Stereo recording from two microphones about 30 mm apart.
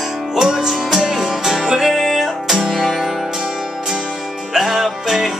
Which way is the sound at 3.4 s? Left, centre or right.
Right.